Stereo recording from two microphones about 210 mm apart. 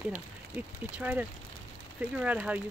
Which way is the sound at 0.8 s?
10° right (ahead or behind).